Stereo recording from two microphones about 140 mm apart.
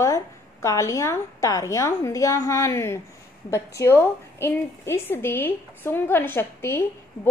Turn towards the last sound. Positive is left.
turn(degrees=15)  # may be behind; listen again after turning